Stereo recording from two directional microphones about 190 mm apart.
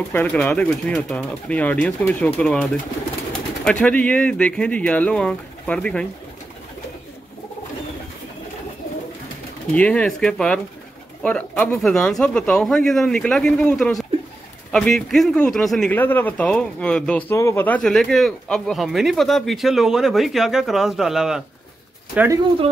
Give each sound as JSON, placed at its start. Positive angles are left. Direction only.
{"t": 0.1, "sound": "speech", "side_deg": 10}
{"t": 9.8, "sound": "speech", "side_deg": 5}